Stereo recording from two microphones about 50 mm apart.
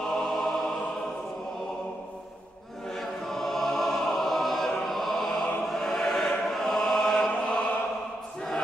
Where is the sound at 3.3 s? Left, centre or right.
Centre.